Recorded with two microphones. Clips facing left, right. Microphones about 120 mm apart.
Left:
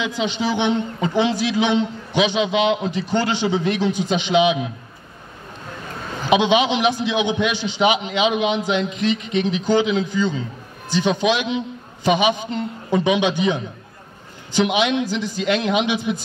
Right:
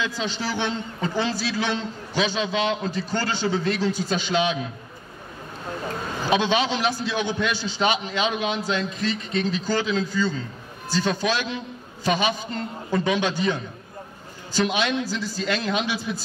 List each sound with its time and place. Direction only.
0.0 s a man's voice: 15° left (ahead or behind)
6.2 s a man's voice: 15° left (ahead or behind)